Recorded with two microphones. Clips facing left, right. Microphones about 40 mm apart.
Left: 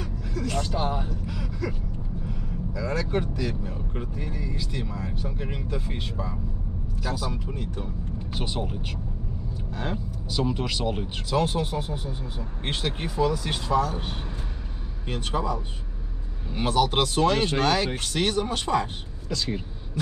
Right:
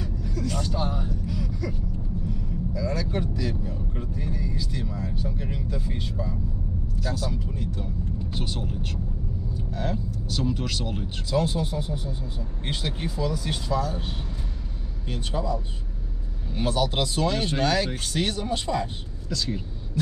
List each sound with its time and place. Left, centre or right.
0.2 s vehicle: left
0.7 s speech: centre
1.2 s vehicle: left
2.7 s vehicle: left
3.1 s speech: left
7.0 s speech: centre
7.2 s speech: left
7.7 s speech: centre
10.2 s speech: centre
11.2 s speech: left
15.0 s speech: left
17.6 s speech: left
18.5 s speech: left
19.2 s speech: centre